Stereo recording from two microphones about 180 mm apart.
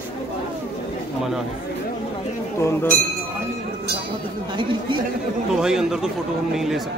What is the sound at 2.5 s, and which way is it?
Speech, 15° left (ahead or behind).